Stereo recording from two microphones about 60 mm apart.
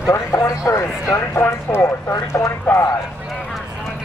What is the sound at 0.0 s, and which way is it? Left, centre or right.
Speech, left.